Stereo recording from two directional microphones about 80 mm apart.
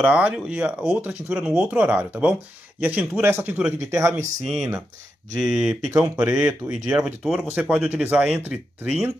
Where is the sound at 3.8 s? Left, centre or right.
Right.